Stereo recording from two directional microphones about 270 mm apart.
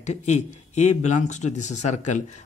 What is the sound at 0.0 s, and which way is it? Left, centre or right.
Speech, left.